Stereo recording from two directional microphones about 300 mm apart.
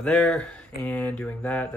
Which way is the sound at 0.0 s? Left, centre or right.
Centre.